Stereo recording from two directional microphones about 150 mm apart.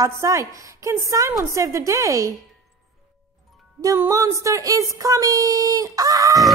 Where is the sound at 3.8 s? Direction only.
20° right (ahead or behind).